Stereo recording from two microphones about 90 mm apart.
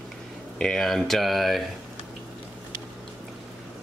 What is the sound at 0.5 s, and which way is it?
Speech, 5° left (ahead or behind).